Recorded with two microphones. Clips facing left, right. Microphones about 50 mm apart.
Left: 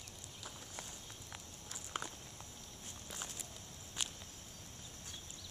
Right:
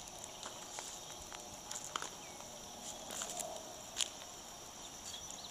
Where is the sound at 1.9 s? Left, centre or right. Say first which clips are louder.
Left 1 dB; centre.